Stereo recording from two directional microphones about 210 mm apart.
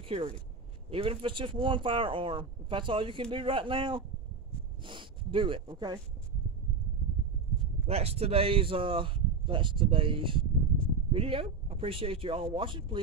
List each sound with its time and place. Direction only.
0.0 s speech: 25° right (ahead or behind)
7.8 s speech: 30° right (ahead or behind)